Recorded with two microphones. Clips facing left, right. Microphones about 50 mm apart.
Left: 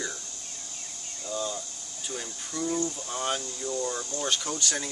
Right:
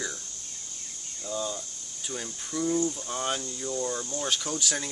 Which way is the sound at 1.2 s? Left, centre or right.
Centre.